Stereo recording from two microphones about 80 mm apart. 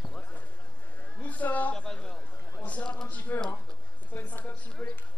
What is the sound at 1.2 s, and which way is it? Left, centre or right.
A man's voice, centre.